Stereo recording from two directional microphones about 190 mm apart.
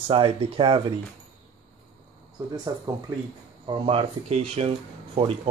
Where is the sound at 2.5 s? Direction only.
20° right (ahead or behind).